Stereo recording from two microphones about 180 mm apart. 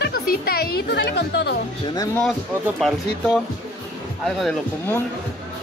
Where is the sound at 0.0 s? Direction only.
55° left (ahead or behind).